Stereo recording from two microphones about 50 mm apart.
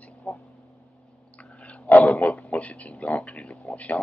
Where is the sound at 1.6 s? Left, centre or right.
Left.